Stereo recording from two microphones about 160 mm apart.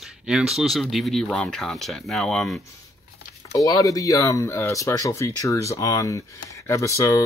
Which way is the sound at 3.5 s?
20° left (ahead or behind).